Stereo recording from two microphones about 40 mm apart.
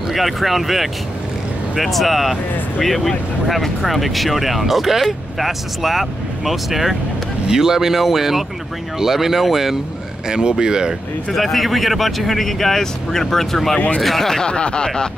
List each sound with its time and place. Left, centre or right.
0.1 s speech: centre
11.3 s speech: centre
14.5 s speech: left